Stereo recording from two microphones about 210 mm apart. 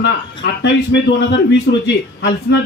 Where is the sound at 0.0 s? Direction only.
55° left (ahead or behind).